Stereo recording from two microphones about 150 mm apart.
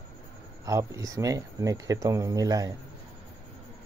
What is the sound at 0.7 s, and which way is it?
Speech, 20° right (ahead or behind).